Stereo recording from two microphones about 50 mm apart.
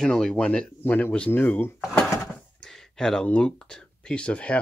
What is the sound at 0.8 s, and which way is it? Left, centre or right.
Speech, left.